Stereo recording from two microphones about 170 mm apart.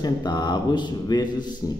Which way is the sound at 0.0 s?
25° left (ahead or behind).